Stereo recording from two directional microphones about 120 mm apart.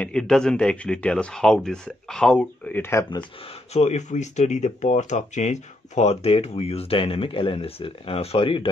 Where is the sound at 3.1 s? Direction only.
40° left (ahead or behind).